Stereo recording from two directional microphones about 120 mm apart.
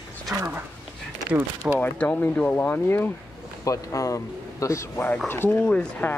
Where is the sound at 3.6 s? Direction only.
30° left (ahead or behind).